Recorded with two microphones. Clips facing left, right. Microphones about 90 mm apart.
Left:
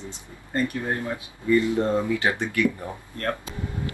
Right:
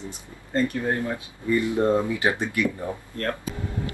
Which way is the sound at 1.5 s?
20° right (ahead or behind).